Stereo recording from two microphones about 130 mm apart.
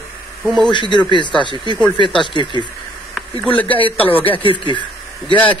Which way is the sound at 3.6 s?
45° left (ahead or behind).